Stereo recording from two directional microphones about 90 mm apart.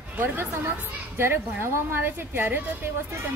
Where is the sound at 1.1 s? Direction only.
25° right (ahead or behind).